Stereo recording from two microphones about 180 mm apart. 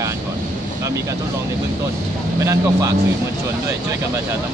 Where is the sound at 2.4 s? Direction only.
15° right (ahead or behind).